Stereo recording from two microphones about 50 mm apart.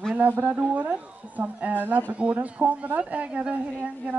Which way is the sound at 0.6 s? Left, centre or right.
Right.